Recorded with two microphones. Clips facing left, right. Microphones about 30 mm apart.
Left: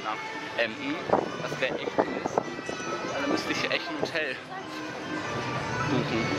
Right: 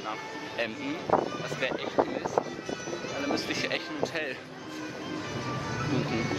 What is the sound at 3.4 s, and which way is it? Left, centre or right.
Speech, centre.